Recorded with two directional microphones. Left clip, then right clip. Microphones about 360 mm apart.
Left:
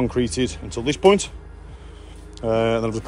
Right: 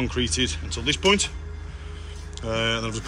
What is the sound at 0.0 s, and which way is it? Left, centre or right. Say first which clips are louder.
Speech: left 3 dB; centre.